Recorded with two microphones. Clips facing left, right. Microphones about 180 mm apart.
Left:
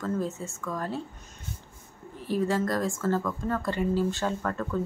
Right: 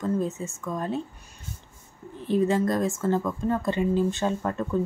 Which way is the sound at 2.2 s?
20° right (ahead or behind).